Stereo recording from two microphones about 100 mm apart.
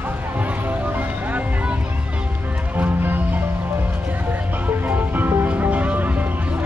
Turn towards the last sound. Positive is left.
turn(degrees=-15)  # may be behind; listen again after turning